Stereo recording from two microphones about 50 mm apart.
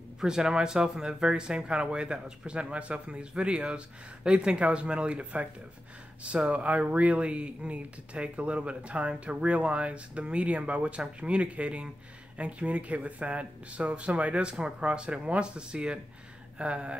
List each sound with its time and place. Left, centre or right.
0.2 s speech: centre